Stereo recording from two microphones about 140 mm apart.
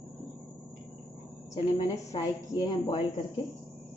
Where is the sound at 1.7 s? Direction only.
25° left (ahead or behind).